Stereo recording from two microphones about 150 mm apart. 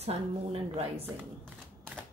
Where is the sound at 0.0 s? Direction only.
40° right (ahead or behind).